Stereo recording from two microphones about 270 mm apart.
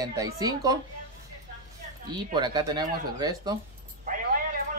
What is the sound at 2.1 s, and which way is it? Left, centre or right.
Speech, centre.